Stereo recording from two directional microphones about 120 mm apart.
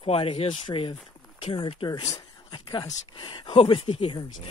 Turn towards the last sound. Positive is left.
turn(degrees=45)  # may be behind; listen again after turning